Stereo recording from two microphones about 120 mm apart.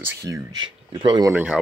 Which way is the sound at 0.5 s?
40° right (ahead or behind).